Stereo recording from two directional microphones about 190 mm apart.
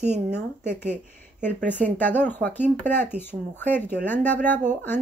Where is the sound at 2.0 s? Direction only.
10° left (ahead or behind).